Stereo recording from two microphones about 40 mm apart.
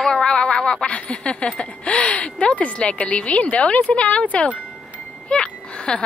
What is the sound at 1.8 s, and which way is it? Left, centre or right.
A woman's voice, left.